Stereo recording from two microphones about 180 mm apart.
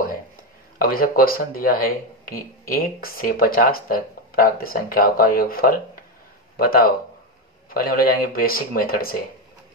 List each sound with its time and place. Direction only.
0.7 s speech: 55° left (ahead or behind)